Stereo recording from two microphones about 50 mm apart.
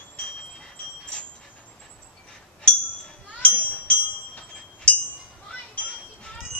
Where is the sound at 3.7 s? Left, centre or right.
Left.